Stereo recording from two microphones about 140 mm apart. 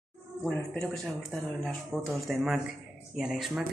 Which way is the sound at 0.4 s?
5° left (ahead or behind).